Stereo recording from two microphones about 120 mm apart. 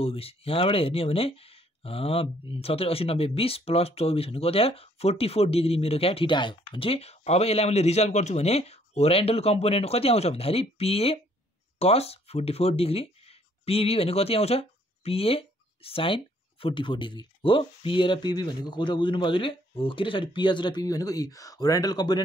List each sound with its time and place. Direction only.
0.0 s speech: 55° left (ahead or behind); by 22.2 s 35° left (ahead or behind)